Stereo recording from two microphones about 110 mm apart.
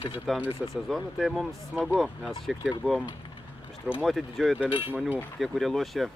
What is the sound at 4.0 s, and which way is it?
Speech, centre (ahead or behind).